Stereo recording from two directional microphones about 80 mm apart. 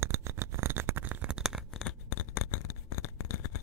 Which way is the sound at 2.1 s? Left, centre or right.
Left.